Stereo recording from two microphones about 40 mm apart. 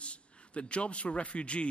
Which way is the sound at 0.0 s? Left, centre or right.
Left.